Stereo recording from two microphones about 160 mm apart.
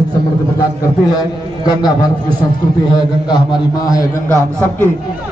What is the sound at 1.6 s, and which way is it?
Speech, 25° left (ahead or behind).